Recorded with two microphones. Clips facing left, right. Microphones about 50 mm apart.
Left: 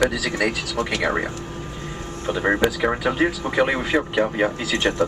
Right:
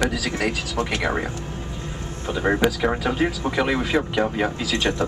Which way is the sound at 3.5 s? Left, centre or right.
Left.